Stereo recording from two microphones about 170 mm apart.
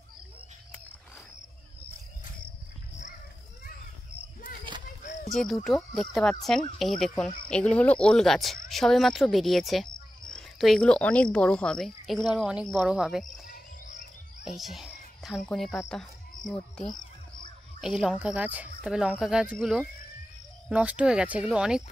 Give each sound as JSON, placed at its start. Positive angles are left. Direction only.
{"t": 5.3, "sound": "speech", "side_deg": 0}
{"t": 13.5, "sound": "cricket", "side_deg": 50}
{"t": 14.4, "sound": "a child's voice", "side_deg": 0}